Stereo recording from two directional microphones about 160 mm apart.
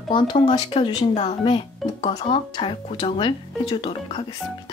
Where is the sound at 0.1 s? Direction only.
30° left (ahead or behind).